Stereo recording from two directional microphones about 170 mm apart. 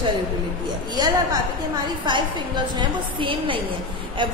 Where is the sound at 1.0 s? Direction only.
25° right (ahead or behind).